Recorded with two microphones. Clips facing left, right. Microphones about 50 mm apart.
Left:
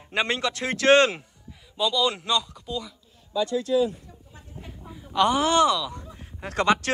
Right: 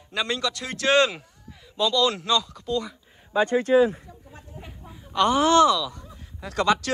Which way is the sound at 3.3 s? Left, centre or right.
Right.